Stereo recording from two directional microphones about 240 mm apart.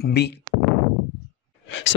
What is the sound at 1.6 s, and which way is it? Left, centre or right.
Speech, left.